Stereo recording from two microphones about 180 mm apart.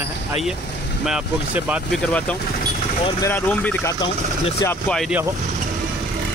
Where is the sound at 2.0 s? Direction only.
5° left (ahead or behind).